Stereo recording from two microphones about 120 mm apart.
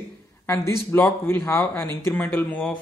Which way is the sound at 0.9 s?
15° left (ahead or behind).